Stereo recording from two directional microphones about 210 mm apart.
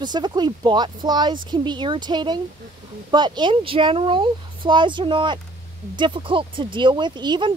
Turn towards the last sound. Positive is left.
turn(degrees=-20)  # may be behind; listen again after turning